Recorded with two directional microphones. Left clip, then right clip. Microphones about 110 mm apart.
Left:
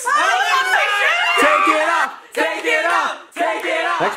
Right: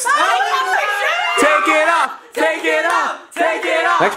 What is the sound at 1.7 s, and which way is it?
Speech, 20° right (ahead or behind).